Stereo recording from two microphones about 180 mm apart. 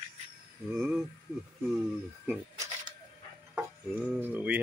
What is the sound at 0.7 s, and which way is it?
Speech, 5° right (ahead or behind).